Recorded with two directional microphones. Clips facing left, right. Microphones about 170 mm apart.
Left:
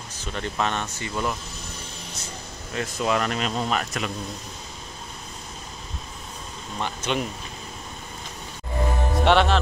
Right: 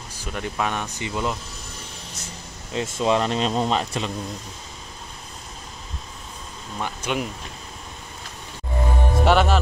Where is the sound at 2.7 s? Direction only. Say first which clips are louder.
Right 3 dB; 25° right (ahead or behind).